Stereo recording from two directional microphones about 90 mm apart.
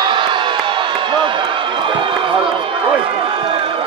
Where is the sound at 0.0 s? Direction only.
60° right (ahead or behind).